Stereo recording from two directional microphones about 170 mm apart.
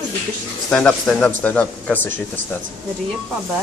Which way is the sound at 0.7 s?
5° left (ahead or behind).